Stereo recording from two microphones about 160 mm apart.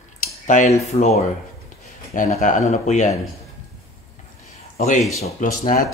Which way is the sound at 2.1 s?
55° left (ahead or behind).